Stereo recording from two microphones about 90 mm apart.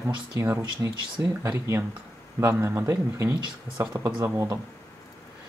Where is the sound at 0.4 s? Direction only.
30° right (ahead or behind).